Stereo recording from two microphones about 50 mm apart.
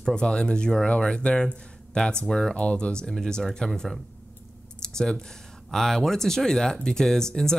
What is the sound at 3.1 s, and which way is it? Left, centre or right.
Speech, centre.